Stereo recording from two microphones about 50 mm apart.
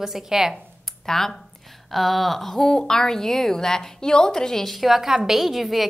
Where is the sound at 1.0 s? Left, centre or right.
Centre.